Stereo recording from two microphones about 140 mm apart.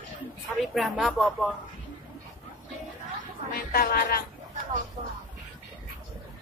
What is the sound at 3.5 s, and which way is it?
Speech, 90° left.